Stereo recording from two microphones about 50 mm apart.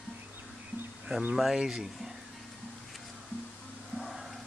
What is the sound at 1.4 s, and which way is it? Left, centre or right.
Speech, centre.